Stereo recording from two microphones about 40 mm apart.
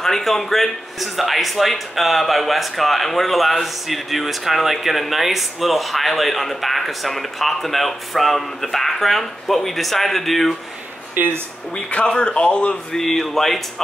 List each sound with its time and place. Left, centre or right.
0.0 s speech: centre
11.1 s speech: right
12.1 s a man's voice: left
12.9 s speech: centre